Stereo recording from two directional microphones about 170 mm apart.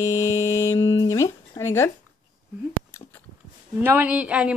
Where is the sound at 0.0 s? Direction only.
20° left (ahead or behind).